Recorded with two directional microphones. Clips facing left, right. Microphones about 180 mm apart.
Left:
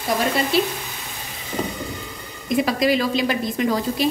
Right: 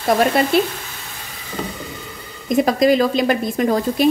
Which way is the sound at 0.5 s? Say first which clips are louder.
Right 2 dB; 55° right (ahead or behind).